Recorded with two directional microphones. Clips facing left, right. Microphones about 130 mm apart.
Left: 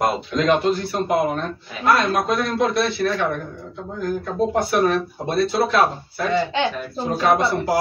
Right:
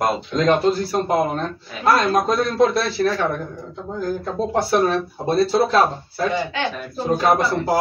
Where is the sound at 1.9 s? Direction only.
40° right (ahead or behind).